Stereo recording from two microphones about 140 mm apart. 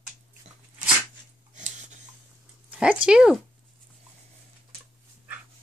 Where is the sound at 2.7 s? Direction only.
10° right (ahead or behind).